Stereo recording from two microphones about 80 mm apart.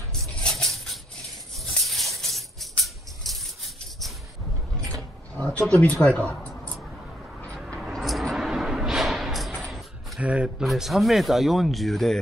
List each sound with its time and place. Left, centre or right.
0.1 s a sound: centre
1.9 s music: centre
5.7 s speech: centre
7.9 s a sound: centre
10.2 s speech: centre
10.6 s speech: centre